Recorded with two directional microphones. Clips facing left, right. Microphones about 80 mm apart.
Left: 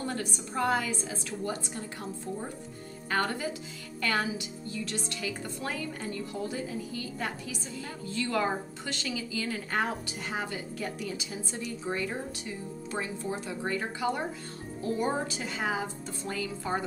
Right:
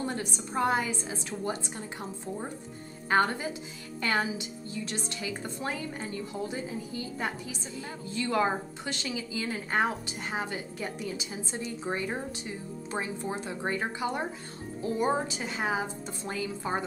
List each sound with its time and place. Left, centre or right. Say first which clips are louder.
0.0 s a woman's voice: right 1 dB; right
3.1 s a woman's voice: right 4 dB; right